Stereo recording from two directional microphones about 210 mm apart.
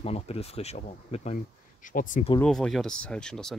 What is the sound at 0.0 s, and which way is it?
Speech, 30° left (ahead or behind).